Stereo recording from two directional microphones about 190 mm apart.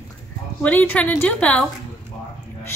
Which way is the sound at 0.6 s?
10° left (ahead or behind).